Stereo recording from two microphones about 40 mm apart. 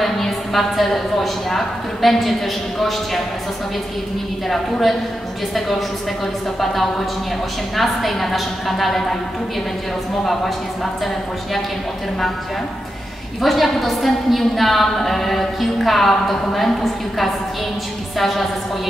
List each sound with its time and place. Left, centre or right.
0.0 s a woman's voice: centre
4.5 s a woman's voice: centre
13.4 s a woman's voice: centre